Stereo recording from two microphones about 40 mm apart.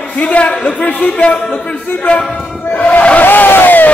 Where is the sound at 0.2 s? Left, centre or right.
Left.